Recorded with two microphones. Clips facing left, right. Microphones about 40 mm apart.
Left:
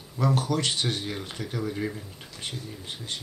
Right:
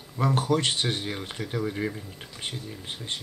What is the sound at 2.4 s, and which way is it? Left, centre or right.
Speech, right.